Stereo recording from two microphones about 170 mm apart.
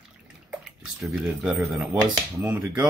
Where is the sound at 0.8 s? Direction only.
Centre (ahead or behind).